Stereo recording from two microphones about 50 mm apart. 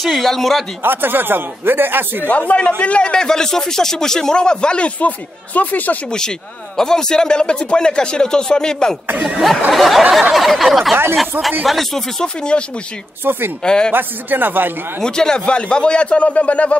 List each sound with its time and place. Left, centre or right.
0.0 s a sound: centre
0.8 s speech: right
2.2 s a man's voice: left
6.8 s speech: centre
9.4 s a sound: centre
12.4 s a man's voice: centre
13.2 s speech: right
13.7 s speech: centre
13.9 s speech: right
15.0 s a man's voice: centre